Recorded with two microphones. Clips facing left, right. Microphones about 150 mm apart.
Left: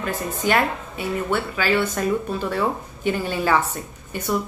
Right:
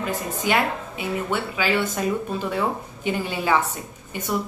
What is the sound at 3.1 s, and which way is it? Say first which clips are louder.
Speech: left 2 dB; 15° right (ahead or behind).